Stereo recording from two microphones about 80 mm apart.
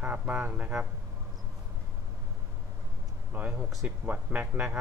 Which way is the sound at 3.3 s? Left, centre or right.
Right.